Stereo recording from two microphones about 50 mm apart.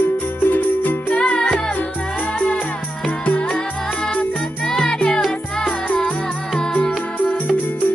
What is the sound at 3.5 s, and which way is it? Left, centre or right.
Music, centre.